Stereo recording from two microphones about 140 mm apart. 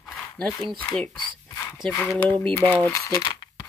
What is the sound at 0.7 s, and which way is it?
Speech, 10° left (ahead or behind).